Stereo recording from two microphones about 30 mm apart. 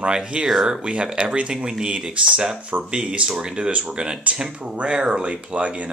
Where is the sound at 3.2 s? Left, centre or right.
Right.